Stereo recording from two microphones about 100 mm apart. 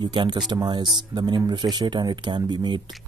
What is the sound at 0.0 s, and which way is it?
Speech, 50° right (ahead or behind).